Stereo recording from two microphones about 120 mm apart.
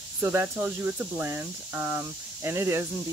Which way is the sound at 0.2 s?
20° right (ahead or behind).